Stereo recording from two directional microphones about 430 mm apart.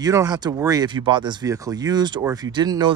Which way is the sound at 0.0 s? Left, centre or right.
Centre.